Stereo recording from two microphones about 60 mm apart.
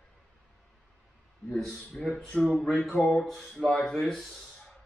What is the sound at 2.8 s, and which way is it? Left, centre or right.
Speech, centre.